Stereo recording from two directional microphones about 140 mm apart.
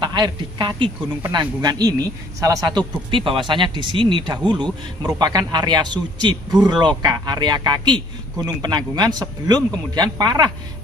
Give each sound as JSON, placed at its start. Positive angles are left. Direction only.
{"t": 0.0, "sound": "speech", "side_deg": -35}
{"t": 3.1, "sound": "speech", "side_deg": -35}